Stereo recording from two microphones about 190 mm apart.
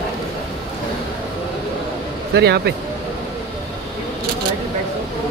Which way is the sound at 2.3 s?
60° right (ahead or behind).